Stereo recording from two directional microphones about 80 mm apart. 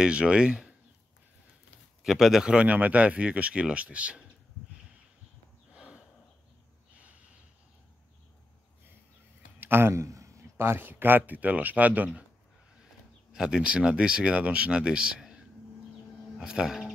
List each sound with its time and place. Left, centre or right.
0.0 s speech: centre
2.0 s speech: centre
5.7 s a sound: centre
9.6 s a man's voice: right
13.3 s speech: centre
16.3 s speech: centre